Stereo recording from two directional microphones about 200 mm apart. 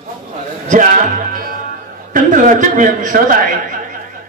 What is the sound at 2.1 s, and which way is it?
A man's voice, 40° right (ahead or behind).